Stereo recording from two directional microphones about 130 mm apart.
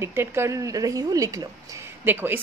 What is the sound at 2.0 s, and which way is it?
Speech, 15° right (ahead or behind).